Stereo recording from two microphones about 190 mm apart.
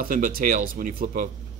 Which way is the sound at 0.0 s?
45° right (ahead or behind).